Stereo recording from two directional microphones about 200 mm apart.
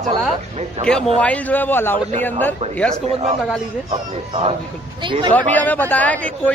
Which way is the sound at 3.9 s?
30° right (ahead or behind).